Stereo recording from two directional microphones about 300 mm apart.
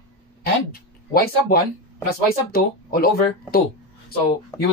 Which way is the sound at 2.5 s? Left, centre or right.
Left.